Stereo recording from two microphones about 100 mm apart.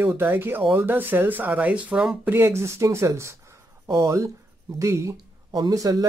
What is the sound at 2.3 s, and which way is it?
Speech, 25° right (ahead or behind).